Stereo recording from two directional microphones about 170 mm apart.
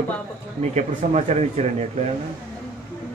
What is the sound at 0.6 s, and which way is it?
Speech, 45° right (ahead or behind).